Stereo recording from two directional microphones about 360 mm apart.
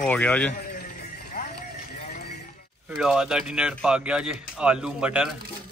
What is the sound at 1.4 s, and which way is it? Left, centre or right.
Clip-clop, centre.